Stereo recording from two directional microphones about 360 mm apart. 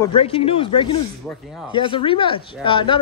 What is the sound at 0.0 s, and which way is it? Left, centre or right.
Speech, centre.